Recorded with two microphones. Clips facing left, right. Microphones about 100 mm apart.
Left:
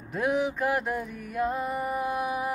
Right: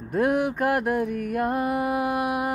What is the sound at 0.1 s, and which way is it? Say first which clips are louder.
Music: right 4 dB; 55° right (ahead or behind).